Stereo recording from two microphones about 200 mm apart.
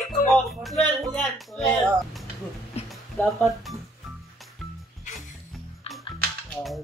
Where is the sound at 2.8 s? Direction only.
30° left (ahead or behind).